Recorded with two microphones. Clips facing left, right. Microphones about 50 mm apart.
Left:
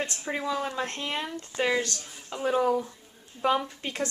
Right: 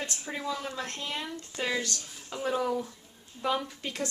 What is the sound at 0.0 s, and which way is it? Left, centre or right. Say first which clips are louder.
Speech: left 4 dB; left.